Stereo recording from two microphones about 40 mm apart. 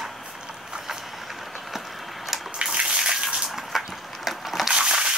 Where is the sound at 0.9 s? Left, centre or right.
Centre.